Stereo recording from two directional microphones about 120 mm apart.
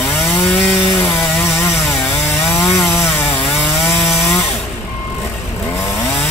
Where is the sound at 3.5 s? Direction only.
Centre (ahead or behind).